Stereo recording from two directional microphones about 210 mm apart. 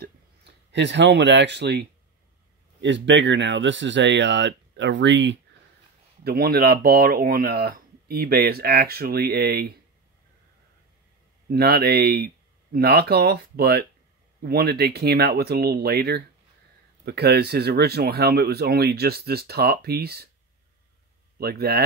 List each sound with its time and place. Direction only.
0.7 s speech: 55° right (ahead or behind)
6.2 s speech: 45° right (ahead or behind)
11.5 s speech: 50° right (ahead or behind)
21.4 s speech: 50° right (ahead or behind)